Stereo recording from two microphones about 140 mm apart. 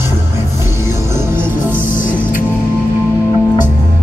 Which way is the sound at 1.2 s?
15° right (ahead or behind).